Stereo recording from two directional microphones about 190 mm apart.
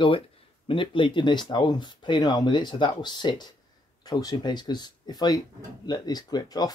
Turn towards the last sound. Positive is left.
turn(degrees=20)  # may be behind; listen again after turning